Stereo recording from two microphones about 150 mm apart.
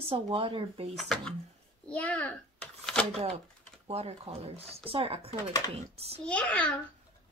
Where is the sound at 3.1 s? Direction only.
45° right (ahead or behind).